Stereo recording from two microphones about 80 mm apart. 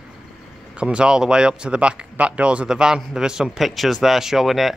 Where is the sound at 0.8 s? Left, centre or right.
Centre.